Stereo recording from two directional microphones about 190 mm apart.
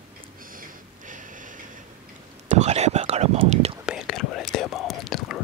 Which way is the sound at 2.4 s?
35° right (ahead or behind).